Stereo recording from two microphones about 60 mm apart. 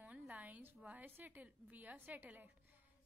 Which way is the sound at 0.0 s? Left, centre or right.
Right.